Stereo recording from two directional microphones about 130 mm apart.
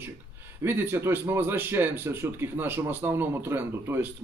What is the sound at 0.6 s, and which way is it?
A man's voice, 20° right (ahead or behind).